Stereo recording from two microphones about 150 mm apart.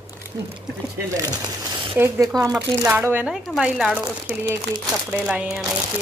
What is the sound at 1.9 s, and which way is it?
A woman's voice, 15° right (ahead or behind).